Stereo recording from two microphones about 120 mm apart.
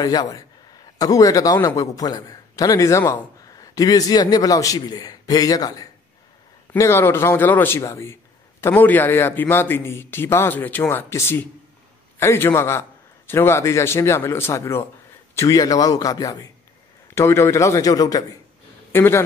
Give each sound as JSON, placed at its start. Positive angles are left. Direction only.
{"t": 0.0, "sound": "a man's voice", "side_deg": 35}
{"t": 6.7, "sound": "a man's voice", "side_deg": 20}
{"t": 18.9, "sound": "speech", "side_deg": 20}